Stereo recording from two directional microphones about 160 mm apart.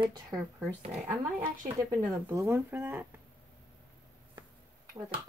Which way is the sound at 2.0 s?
15° right (ahead or behind).